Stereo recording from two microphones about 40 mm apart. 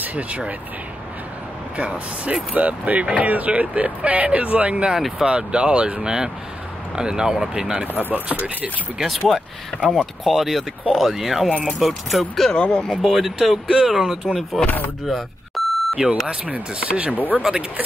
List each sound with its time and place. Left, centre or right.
0.0 s speech: right
1.8 s speech: right; by 7.8 s centre
8.1 s speech: right
9.0 s speech: centre
12.5 s speech: left
13.0 s speech: centre
15.0 s beep: centre
16.4 s speech: right
17.4 s speech: centre